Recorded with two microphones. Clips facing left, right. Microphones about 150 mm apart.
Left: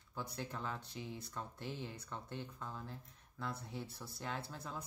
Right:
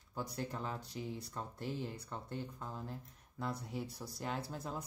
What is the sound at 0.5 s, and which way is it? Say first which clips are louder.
Speech: right 2 dB; 40° right (ahead or behind).